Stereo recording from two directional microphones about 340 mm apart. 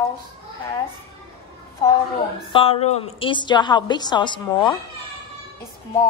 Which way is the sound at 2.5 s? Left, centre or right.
Centre.